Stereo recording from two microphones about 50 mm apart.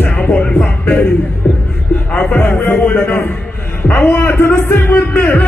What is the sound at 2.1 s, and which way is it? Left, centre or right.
Music, left.